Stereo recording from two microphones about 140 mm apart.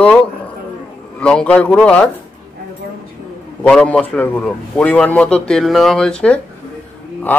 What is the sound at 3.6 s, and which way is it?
A man's voice, 10° left (ahead or behind).